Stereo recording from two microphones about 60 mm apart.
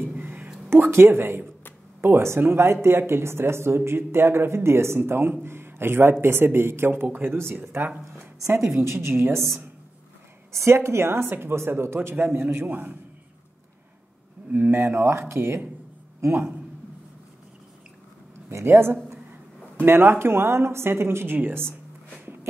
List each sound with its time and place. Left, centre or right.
0.2 s a sound: right
0.7 s a man's voice: right
8.6 s speech: right
10.5 s speech: right
14.5 s a man's voice: right
18.5 s speech: right
22.2 s walk: right